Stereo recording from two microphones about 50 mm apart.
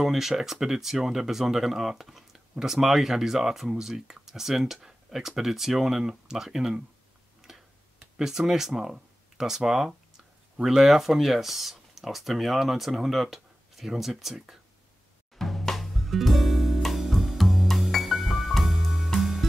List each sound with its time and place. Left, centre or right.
0.0 s speech: centre
7.4 s tick-tock: centre
8.2 s speech: centre
15.3 s music: centre